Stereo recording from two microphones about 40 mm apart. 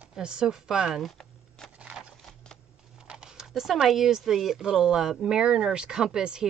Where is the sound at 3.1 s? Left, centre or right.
Centre.